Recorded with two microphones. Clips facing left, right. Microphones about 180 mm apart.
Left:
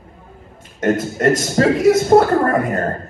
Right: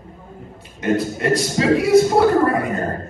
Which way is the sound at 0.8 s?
45° left (ahead or behind).